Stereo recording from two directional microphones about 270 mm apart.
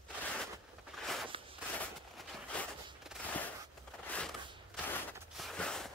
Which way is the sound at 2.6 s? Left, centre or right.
Centre.